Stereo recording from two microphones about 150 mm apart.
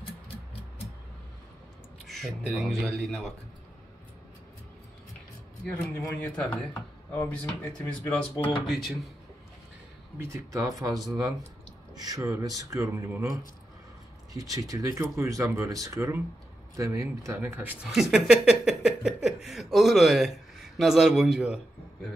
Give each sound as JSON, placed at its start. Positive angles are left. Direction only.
{"t": 2.0, "sound": "speech", "side_deg": 0}
{"t": 5.7, "sound": "speech", "side_deg": 10}
{"t": 7.6, "sound": "speech", "side_deg": 20}
{"t": 8.1, "sound": "speech", "side_deg": 10}
{"t": 8.6, "sound": "speech", "side_deg": 0}
{"t": 10.1, "sound": "speech", "side_deg": -20}